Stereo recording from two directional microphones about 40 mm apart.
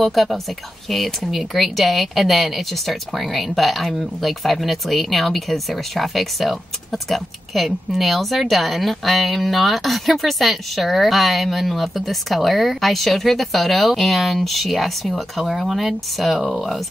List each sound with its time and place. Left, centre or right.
0.0 s speech: centre